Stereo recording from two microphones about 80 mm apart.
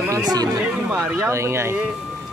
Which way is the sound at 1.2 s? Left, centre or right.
Right.